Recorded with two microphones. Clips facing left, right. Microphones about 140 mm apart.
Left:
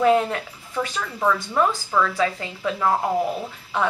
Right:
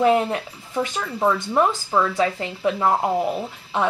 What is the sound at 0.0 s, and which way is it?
Speech, 20° right (ahead or behind).